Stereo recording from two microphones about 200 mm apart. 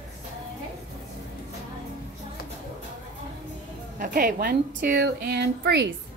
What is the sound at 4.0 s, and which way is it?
A woman's voice, 45° right (ahead or behind).